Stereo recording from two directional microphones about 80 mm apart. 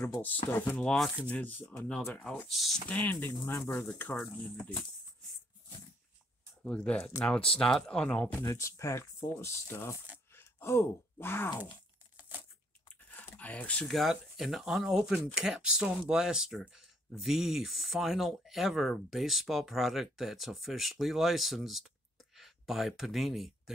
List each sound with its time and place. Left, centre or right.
0.5 s speech: left
0.7 s speech: centre
1.3 s speech: left
1.9 s speech: centre
2.1 s speech: centre
2.5 s speech: centre
2.9 s speech: left
6.6 s speech: centre
8.4 s speech: left
13.1 s a sound: centre
13.8 s speech: centre